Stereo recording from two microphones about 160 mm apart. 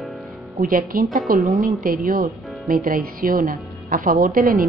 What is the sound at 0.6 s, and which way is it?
Speech, 60° right (ahead or behind).